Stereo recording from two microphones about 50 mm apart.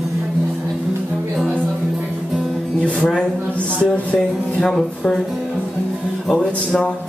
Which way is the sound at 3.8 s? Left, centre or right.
Left.